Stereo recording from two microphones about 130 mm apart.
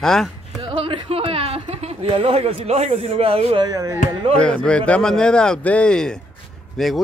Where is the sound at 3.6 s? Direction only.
25° right (ahead or behind).